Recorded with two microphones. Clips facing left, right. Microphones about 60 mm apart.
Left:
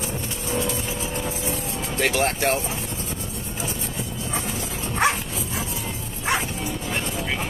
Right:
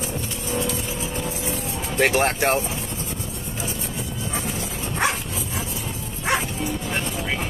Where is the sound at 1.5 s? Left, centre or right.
Right.